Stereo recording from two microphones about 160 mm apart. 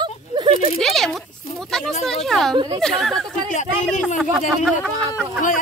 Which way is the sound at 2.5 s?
30° right (ahead or behind).